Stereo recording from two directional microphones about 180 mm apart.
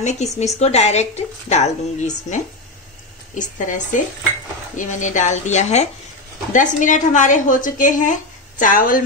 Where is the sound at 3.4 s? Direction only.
45° left (ahead or behind).